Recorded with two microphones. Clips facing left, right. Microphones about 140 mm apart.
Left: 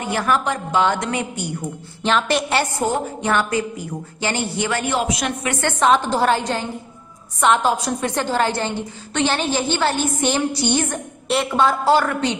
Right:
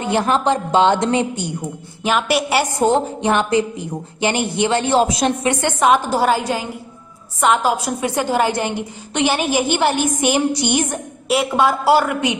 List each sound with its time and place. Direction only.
0.0 s a woman's voice: 25° right (ahead or behind)
2.0 s a woman's voice: 10° right (ahead or behind)
2.8 s a woman's voice: 20° right (ahead or behind)
5.5 s a woman's voice: 15° right (ahead or behind)